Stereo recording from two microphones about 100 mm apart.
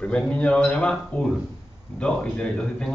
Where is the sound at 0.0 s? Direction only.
10° left (ahead or behind).